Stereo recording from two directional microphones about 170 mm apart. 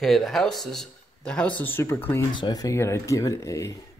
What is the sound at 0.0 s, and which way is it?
Speech, centre (ahead or behind).